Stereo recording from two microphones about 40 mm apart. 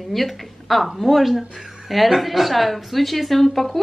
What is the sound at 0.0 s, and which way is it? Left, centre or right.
A woman's voice, centre.